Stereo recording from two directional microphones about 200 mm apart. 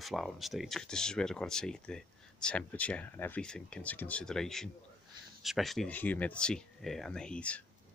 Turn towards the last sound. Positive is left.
turn(degrees=5)  # may be behind; listen again after turning